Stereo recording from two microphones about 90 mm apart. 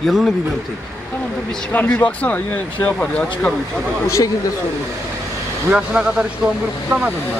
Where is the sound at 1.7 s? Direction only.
15° left (ahead or behind).